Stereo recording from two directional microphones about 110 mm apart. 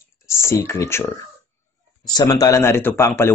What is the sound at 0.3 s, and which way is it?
Speech, 25° left (ahead or behind).